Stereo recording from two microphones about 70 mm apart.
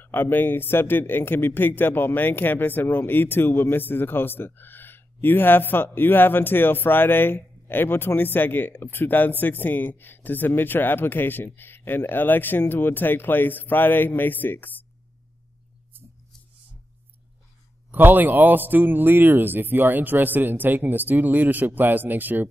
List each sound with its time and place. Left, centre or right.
0.0 s speech: left
17.9 s a man's voice: right